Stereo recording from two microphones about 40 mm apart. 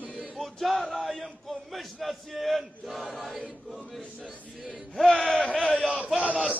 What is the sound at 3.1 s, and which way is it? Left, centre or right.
Choir, centre.